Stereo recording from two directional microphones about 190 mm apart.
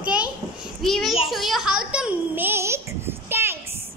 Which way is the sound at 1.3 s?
Centre (ahead or behind).